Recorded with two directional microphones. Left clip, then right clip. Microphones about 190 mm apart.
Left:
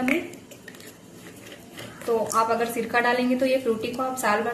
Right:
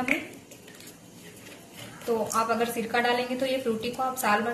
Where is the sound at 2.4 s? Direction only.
20° left (ahead or behind).